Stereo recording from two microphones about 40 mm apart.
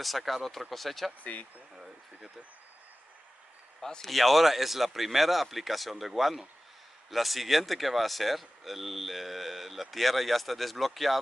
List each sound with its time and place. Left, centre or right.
0.0 s speech: centre
1.2 s speech: left
4.0 s speech: centre